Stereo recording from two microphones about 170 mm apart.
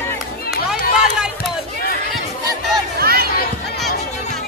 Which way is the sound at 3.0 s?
65° right (ahead or behind).